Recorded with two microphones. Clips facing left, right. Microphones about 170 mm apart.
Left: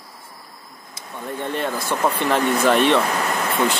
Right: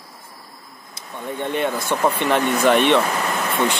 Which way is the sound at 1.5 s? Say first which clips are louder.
Right 3 dB; 5° right (ahead or behind).